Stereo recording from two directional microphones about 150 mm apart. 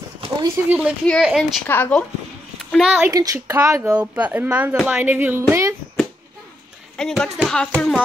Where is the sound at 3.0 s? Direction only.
20° right (ahead or behind).